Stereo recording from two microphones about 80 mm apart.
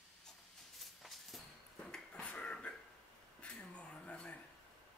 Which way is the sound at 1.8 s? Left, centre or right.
Centre.